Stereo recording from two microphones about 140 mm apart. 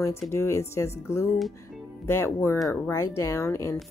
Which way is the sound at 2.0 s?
20° left (ahead or behind).